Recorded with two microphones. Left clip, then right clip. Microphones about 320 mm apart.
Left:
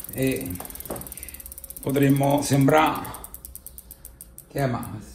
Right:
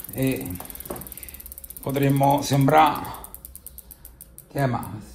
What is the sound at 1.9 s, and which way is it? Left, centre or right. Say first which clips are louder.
Speech: right 1 dB; centre.